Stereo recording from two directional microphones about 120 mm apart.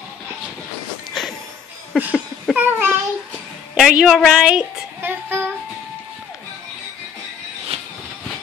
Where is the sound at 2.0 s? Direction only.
15° right (ahead or behind).